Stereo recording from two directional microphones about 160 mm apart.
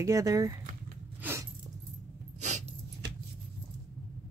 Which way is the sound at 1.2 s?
15° right (ahead or behind).